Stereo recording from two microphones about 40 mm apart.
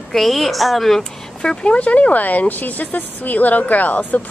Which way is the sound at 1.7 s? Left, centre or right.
Left.